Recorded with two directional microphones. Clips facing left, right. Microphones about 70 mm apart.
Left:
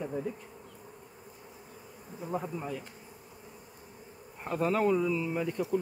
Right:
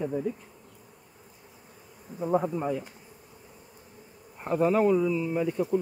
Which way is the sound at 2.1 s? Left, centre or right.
Right.